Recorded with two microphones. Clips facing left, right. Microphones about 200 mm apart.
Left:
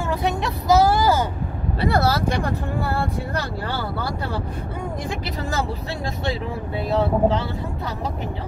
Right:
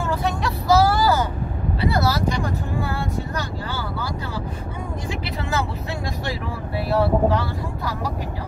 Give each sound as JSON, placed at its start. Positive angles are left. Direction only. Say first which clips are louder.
{"t": 0.1, "sound": "vehicle", "louder": "left 3 dB", "side_deg": 20}
{"t": 1.9, "sound": "vehicle", "louder": "left 2 dB", "side_deg": 55}
{"t": 6.9, "sound": "speech", "louder": "even", "side_deg": 20}